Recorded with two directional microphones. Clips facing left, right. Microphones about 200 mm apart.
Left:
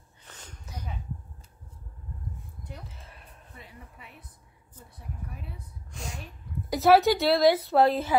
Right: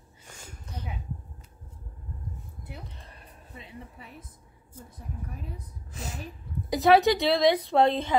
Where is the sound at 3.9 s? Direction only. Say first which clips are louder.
Right 4 dB; 40° right (ahead or behind).